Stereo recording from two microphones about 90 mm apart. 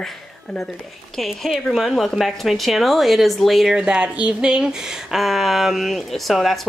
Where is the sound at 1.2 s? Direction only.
Centre (ahead or behind).